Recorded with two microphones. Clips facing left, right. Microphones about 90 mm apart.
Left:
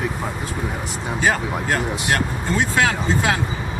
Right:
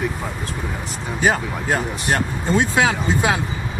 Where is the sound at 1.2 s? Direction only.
15° right (ahead or behind).